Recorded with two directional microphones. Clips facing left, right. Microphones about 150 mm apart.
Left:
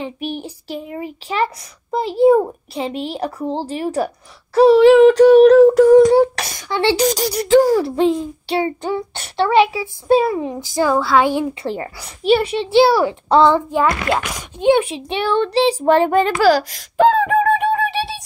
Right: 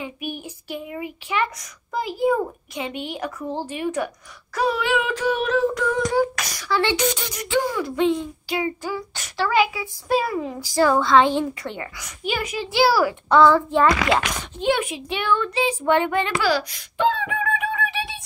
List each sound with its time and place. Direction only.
0.0 s a sound: 35° left (ahead or behind)
10.9 s speech: 5° left (ahead or behind)
11.6 s a child's voice: 35° left (ahead or behind)
13.7 s speech: 10° left (ahead or behind)
14.6 s a child's voice: 25° left (ahead or behind)